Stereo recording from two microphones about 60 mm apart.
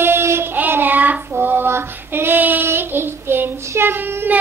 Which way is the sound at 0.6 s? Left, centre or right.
Right.